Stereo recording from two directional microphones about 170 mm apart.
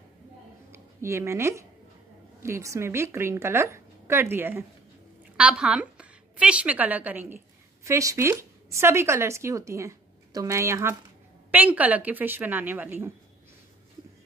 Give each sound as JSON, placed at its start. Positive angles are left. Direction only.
{"t": 0.7, "sound": "a woman's voice", "side_deg": -15}